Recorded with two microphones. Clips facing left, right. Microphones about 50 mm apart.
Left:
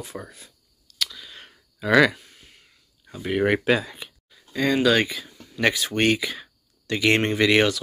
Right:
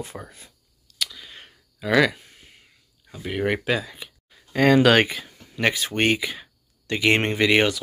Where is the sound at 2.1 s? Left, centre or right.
Right.